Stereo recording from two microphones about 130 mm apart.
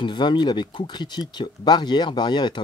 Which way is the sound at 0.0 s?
40° left (ahead or behind).